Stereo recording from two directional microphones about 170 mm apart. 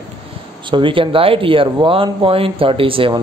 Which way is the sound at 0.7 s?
30° right (ahead or behind).